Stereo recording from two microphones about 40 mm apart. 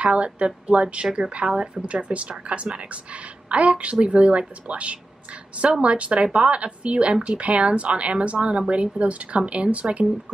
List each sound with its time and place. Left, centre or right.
0.0 s speech: right